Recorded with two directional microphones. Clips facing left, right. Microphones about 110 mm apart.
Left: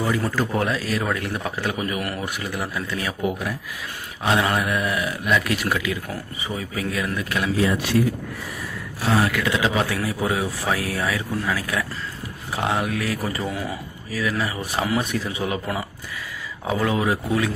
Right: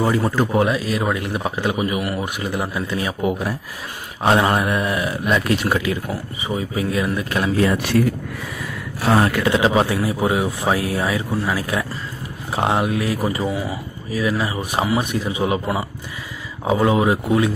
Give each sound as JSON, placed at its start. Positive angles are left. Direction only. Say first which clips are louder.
{"t": 0.0, "sound": "speech", "louder": "right 5 dB", "side_deg": -30}
{"t": 0.4, "sound": "a man's voice", "louder": "right 5 dB", "side_deg": -15}
{"t": 4.2, "sound": "speech", "louder": "right 4 dB", "side_deg": -35}
{"t": 6.0, "sound": "a man's voice", "louder": "right 4 dB", "side_deg": -20}
{"t": 7.5, "sound": "speech", "louder": "right 3 dB", "side_deg": -60}
{"t": 9.3, "sound": "a man's voice", "louder": "right 5 dB", "side_deg": -30}
{"t": 13.5, "sound": "speech", "louder": "right 4 dB", "side_deg": -10}
{"t": 14.1, "sound": "a man's voice", "louder": "right 4 dB", "side_deg": -20}